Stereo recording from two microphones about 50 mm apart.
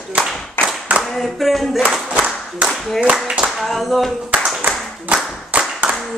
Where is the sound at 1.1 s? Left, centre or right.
Centre.